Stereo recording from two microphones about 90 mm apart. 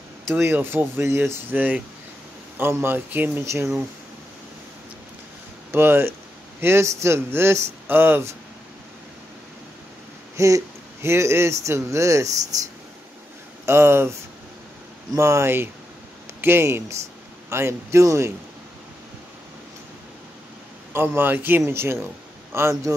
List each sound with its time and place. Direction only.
0.3 s a man's voice: 30° right (ahead or behind)
5.7 s a man's voice: 25° right (ahead or behind)
10.3 s speech: 35° right (ahead or behind)
13.7 s a man's voice: 30° right (ahead or behind)
15.1 s speech: 35° right (ahead or behind)
20.9 s a man's voice: 25° right (ahead or behind)